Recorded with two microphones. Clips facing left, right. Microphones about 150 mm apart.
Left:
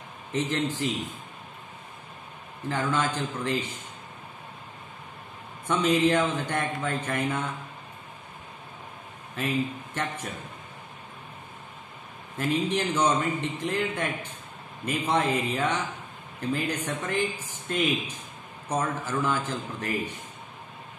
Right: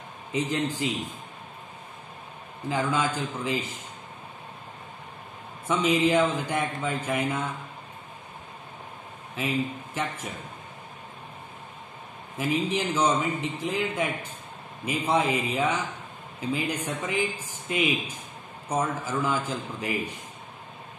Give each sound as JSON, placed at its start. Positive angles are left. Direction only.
{"t": 0.3, "sound": "speech", "side_deg": -10}
{"t": 2.7, "sound": "speech", "side_deg": -10}
{"t": 5.7, "sound": "speech", "side_deg": -10}
{"t": 9.3, "sound": "a man's voice", "side_deg": -5}
{"t": 12.4, "sound": "speech", "side_deg": -10}